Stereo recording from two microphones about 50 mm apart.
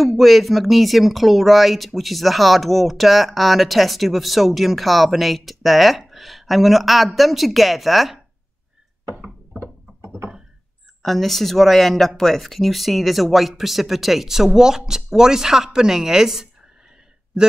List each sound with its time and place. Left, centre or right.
0.0 s speech: centre
9.6 s a sound: right
11.0 s speech: centre